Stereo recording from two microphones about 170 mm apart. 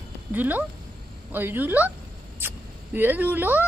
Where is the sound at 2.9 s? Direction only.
10° right (ahead or behind).